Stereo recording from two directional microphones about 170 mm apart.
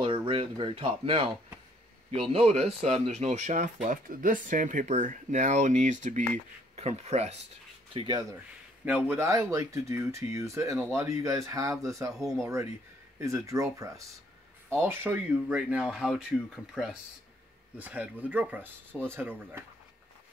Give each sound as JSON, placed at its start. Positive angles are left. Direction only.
{"t": 0.0, "sound": "speech", "side_deg": -30}
{"t": 7.9, "sound": "speech", "side_deg": -25}
{"t": 8.8, "sound": "speech", "side_deg": -10}
{"t": 12.2, "sound": "speech", "side_deg": 0}
{"t": 13.2, "sound": "speech", "side_deg": -20}